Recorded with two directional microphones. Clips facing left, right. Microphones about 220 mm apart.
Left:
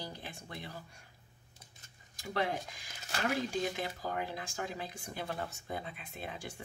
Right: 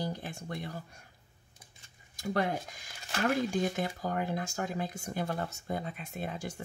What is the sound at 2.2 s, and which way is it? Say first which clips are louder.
Speech: right 4 dB; 45° right (ahead or behind).